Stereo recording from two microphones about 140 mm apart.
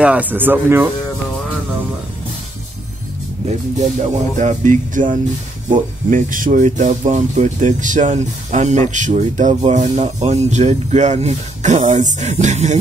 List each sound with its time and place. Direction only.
0.0 s speech: 10° right (ahead or behind)
3.4 s speech: 60° right (ahead or behind)